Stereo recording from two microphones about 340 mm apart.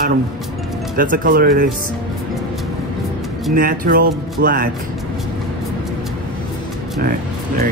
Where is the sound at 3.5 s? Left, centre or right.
Right.